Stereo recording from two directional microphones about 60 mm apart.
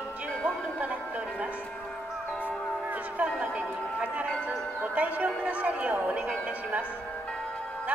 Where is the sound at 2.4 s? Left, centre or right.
Right.